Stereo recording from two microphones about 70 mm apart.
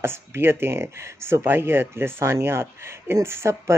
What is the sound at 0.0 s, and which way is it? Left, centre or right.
Speech, right.